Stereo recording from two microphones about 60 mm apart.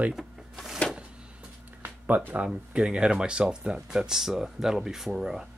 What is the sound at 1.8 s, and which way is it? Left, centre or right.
Music, right.